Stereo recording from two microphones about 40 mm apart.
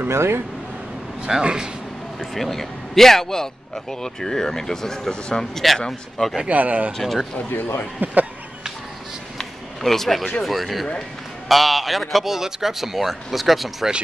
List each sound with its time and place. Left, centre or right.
0.0 s speech: right
1.4 s speech: right
2.3 s a man's voice: centre
6.5 s speech: right
6.9 s speech: centre
7.4 s a man's voice: left
8.0 s speech: right
9.4 s a sound: centre
10.4 s speech: centre